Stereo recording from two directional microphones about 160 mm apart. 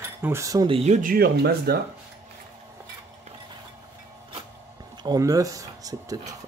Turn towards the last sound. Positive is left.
turn(degrees=-20)  # may be behind; listen again after turning